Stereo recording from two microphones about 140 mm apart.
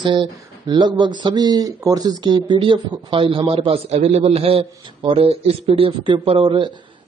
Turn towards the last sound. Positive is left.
turn(degrees=-35)  # may be behind; listen again after turning